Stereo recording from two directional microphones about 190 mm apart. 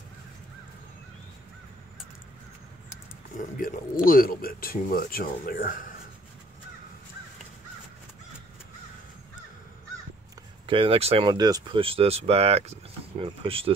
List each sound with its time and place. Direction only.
3.3 s speech: 45° left (ahead or behind)
10.7 s speech: 30° right (ahead or behind)